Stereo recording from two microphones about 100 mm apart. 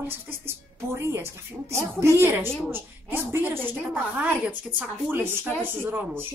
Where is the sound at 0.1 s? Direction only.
25° right (ahead or behind).